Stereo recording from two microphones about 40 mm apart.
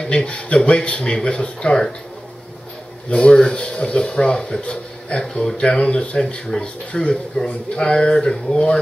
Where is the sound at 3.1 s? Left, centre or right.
Left.